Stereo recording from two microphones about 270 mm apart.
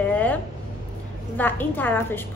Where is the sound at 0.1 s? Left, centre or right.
Centre.